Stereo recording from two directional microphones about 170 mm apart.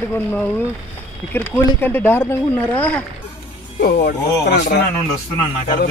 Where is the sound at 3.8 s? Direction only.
85° left.